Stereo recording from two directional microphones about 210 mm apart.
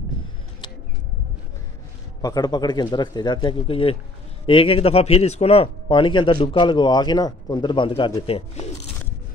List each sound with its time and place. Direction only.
2.2 s speech: 20° left (ahead or behind)